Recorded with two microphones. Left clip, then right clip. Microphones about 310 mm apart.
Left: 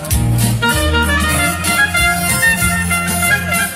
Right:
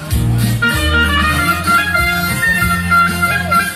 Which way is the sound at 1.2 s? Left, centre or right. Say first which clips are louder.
Right 2 dB; centre.